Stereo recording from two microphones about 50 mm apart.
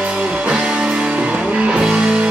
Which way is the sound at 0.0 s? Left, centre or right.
Right.